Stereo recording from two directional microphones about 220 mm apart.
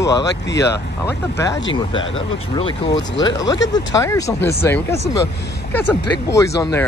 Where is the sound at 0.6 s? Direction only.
50° left (ahead or behind).